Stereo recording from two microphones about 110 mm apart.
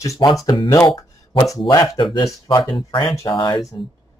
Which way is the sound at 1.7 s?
40° left (ahead or behind).